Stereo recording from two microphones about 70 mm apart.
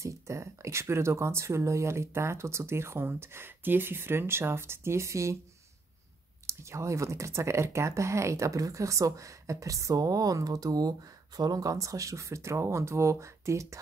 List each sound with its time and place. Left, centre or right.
0.0 s speech: right
6.4 s speech: right